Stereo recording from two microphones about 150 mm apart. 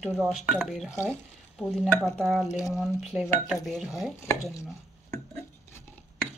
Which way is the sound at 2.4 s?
20° left (ahead or behind).